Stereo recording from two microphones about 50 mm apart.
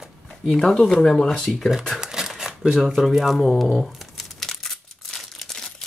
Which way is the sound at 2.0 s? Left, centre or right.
Centre.